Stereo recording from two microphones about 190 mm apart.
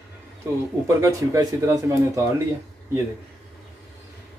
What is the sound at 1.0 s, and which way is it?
Speech, 15° right (ahead or behind).